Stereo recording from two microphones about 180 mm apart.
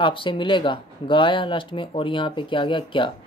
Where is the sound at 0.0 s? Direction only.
30° left (ahead or behind).